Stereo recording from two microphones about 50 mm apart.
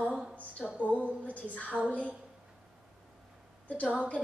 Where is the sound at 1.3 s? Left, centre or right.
Left.